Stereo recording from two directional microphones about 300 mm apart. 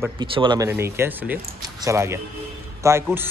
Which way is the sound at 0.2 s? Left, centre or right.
Centre.